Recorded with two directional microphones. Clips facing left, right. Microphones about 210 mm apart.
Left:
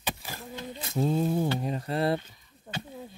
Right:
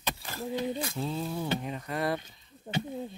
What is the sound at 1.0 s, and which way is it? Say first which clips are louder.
Speech: left 12 dB; 45° left (ahead or behind).